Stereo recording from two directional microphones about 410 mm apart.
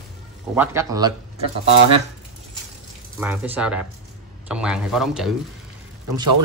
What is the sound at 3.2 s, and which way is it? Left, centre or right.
Speech, centre.